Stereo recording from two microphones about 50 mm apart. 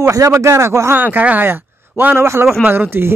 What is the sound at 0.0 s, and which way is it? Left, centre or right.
Speech, right.